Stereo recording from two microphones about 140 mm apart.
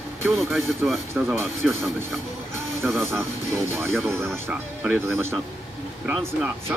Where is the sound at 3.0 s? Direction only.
15° right (ahead or behind).